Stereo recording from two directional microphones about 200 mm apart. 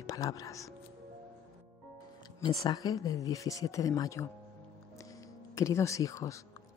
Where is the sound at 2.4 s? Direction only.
20° left (ahead or behind).